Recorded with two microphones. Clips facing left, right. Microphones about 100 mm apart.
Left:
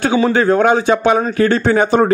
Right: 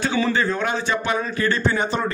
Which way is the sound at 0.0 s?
55° left (ahead or behind).